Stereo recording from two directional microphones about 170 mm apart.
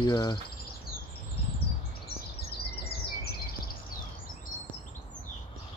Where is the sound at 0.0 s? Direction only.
20° left (ahead or behind).